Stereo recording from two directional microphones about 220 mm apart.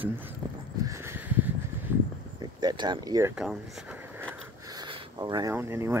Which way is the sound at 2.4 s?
20° right (ahead or behind).